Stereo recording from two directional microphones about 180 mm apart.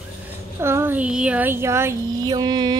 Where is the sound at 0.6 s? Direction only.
15° right (ahead or behind).